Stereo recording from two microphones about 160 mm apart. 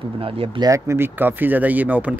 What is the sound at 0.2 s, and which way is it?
Speech, 35° right (ahead or behind).